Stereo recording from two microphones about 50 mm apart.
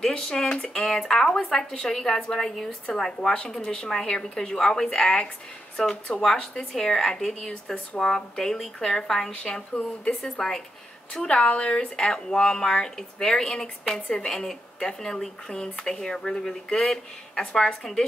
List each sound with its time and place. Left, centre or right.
0.1 s speech: centre
6.5 s speech: centre